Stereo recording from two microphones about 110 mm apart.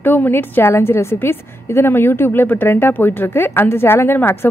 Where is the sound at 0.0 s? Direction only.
15° left (ahead or behind).